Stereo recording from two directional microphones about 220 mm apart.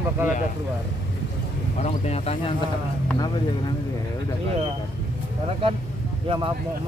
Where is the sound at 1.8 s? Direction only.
30° left (ahead or behind).